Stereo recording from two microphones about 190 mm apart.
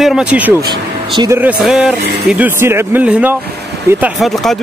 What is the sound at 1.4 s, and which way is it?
Speech, 5° right (ahead or behind).